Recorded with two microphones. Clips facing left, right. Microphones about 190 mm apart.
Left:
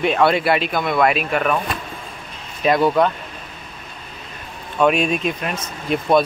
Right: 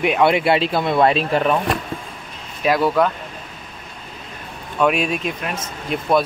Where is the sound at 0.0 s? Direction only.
15° right (ahead or behind).